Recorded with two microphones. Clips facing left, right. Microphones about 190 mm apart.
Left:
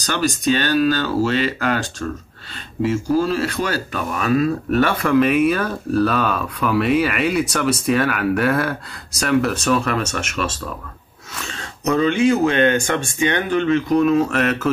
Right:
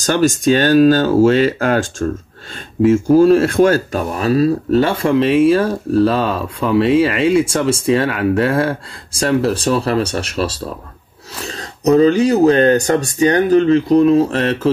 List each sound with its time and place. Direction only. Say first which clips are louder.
0.0 s speech: right 6 dB; 45° right (ahead or behind)
4.1 s speech: right 4 dB; 35° right (ahead or behind)